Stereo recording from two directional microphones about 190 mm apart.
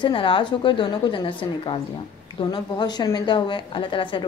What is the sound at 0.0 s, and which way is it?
A woman's voice, 25° left (ahead or behind).